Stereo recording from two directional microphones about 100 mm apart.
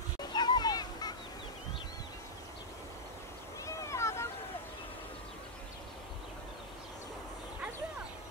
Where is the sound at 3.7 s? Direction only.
30° left (ahead or behind).